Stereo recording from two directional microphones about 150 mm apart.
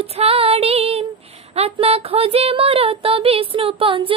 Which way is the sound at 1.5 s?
40° right (ahead or behind).